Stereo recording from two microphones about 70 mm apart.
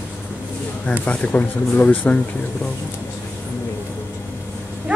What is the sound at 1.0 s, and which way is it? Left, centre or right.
Speech, centre.